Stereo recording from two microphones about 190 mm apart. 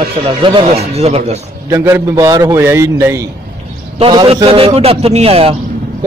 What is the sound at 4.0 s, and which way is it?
A man's voice, 25° right (ahead or behind).